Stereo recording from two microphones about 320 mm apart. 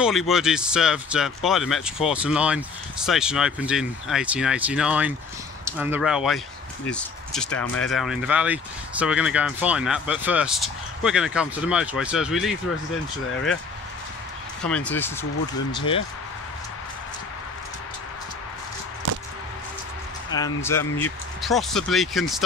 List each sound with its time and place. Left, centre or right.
0.3 s speech: centre
14.7 s speech: centre
19.0 s a sound: right
20.2 s speech: centre